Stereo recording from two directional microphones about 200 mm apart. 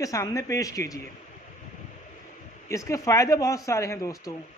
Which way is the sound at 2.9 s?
15° left (ahead or behind).